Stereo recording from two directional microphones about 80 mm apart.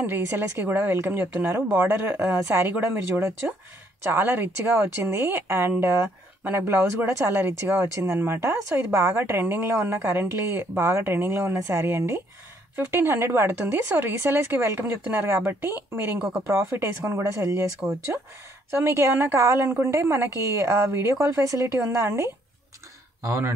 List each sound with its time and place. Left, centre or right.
0.0 s a woman's voice: right